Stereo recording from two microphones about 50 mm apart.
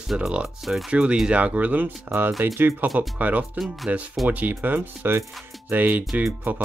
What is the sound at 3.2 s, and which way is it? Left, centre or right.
Speech, right.